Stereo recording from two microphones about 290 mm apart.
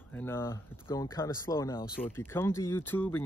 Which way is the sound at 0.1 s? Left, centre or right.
Centre.